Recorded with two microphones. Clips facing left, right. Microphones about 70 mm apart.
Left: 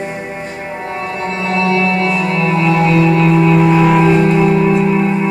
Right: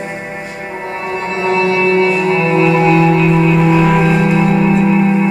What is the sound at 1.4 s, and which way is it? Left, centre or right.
Music, right.